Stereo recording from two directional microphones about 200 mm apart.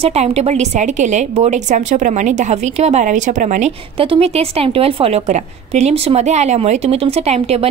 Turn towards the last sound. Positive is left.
turn(degrees=-30)  # may be behind; listen again after turning